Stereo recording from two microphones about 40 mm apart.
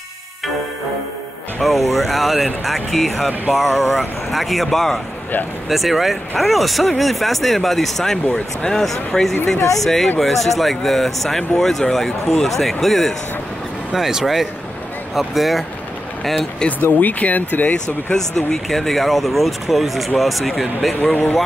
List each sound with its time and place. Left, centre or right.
1.6 s speech: centre
13.9 s speech: centre
17.0 s speech: left
18.1 s speech: centre
18.7 s speech: centre
21.0 s speech: left